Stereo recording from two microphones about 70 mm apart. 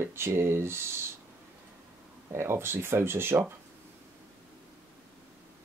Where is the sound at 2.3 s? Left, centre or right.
Right.